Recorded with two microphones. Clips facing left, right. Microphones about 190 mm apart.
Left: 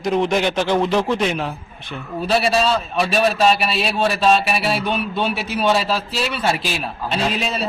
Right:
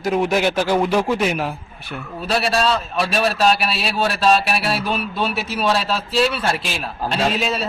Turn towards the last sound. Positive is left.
turn(degrees=0)  # may be behind; listen again after turning